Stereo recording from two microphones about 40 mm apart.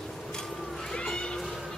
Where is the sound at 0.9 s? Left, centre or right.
Centre.